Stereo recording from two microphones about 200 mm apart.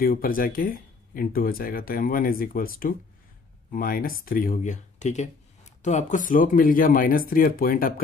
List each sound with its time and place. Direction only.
0.0 s speech: 45° left (ahead or behind)